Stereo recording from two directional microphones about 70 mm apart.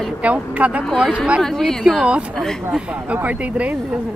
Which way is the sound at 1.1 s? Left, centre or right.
Centre.